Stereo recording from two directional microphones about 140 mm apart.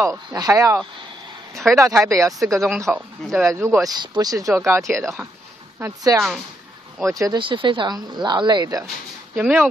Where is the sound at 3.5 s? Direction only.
20° right (ahead or behind).